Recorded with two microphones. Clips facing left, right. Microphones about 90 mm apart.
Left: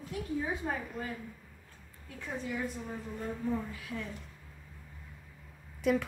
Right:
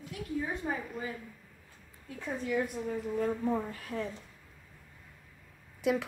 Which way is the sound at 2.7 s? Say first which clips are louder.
Right 7 dB; 70° right (ahead or behind).